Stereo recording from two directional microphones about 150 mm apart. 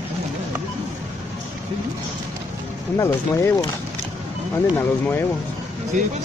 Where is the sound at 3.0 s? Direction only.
15° left (ahead or behind).